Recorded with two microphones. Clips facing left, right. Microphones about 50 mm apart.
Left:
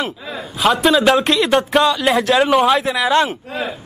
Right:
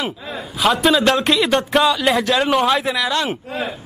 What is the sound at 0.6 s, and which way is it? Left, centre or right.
A man's voice, centre.